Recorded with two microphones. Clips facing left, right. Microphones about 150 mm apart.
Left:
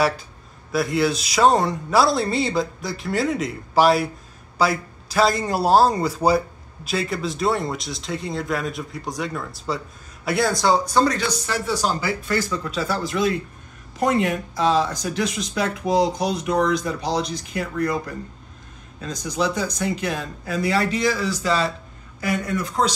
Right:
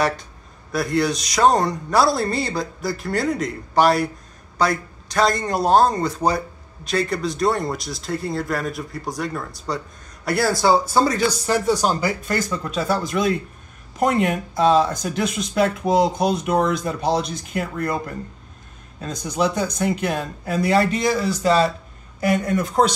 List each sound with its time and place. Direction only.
0.7 s a man's voice: centre (ahead or behind)
11.8 s speech: 45° right (ahead or behind)